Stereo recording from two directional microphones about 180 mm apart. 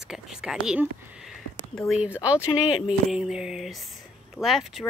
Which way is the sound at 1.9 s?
5° right (ahead or behind).